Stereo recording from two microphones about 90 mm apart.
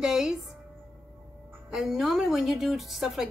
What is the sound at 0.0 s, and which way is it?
Speech, 5° right (ahead or behind).